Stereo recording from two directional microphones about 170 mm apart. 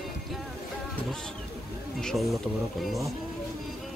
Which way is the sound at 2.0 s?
Centre (ahead or behind).